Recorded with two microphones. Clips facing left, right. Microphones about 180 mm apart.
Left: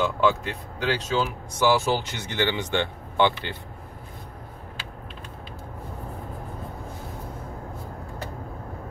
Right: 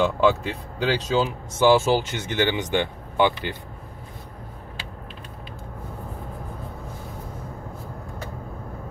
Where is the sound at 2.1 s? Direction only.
20° right (ahead or behind).